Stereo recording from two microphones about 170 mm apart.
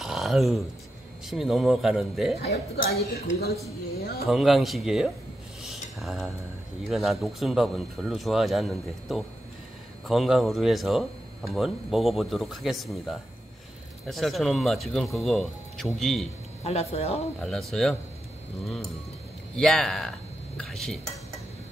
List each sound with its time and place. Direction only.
0.0 s a sound: centre (ahead or behind)
1.2 s speech: centre (ahead or behind)
2.4 s speech: 70° left (ahead or behind)
4.0 s speech: 65° left (ahead or behind)
4.3 s speech: centre (ahead or behind)
5.6 s a sound: centre (ahead or behind)
6.9 s speech: centre (ahead or behind)
16.6 s speech: 40° left (ahead or behind)
17.4 s speech: centre (ahead or behind)
19.5 s speech: centre (ahead or behind)